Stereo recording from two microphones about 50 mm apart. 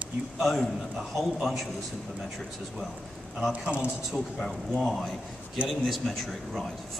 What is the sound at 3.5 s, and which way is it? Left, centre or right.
Speech, right.